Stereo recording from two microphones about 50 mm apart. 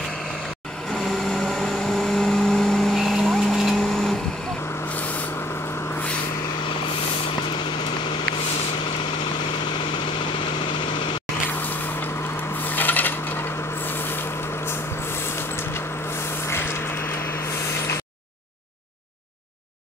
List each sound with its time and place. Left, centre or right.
0.9 s vehicle: centre
3.0 s vehicle: centre
12.6 s coin: left
13.8 s vehicle: left
15.2 s a sound: left